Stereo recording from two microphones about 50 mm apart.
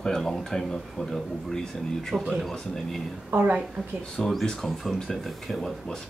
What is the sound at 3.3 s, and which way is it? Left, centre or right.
Speech, right.